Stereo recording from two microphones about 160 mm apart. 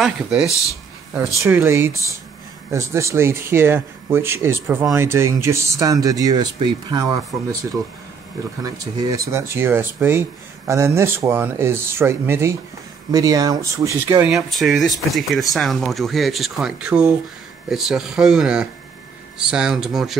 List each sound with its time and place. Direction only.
0.0 s speech: 5° right (ahead or behind)
1.4 s speech: 15° right (ahead or behind)
8.6 s speech: 20° right (ahead or behind); by 20.2 s centre (ahead or behind)